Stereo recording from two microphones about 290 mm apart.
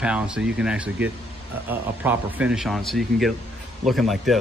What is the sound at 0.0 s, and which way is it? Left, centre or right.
A man's voice, centre.